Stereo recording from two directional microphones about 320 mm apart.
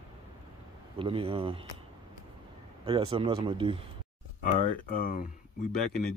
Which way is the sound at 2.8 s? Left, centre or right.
Centre.